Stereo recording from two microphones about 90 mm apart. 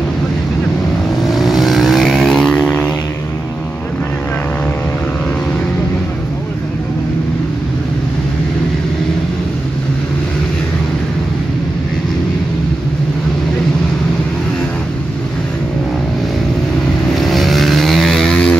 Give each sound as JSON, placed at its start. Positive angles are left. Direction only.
{"t": 1.3, "sound": "vehicle", "side_deg": 0}
{"t": 17.2, "sound": "vehicle", "side_deg": 0}